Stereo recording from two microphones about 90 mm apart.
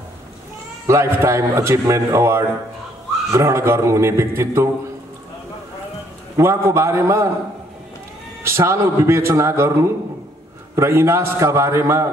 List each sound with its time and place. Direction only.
0.8 s speech: 30° right (ahead or behind)
6.3 s speech: 30° right (ahead or behind)
8.5 s speech: 30° right (ahead or behind)